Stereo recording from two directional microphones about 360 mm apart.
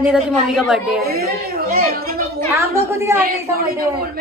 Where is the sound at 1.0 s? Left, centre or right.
Right.